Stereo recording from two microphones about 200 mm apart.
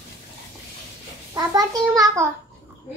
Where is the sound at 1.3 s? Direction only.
15° right (ahead or behind).